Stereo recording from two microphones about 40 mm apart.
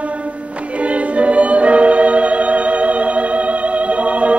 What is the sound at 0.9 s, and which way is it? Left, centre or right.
Music, right.